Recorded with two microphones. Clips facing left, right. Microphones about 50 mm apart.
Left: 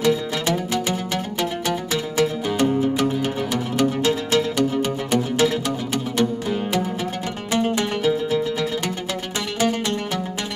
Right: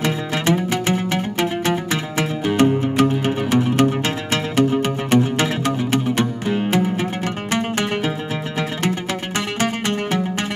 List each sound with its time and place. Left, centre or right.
0.0 s music: right
8.0 s music: right